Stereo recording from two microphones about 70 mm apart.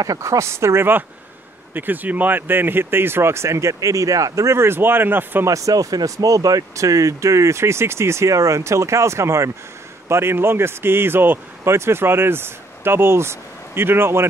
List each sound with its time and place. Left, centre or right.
0.0 s speech: right
1.7 s speech: right
5.5 s speech: right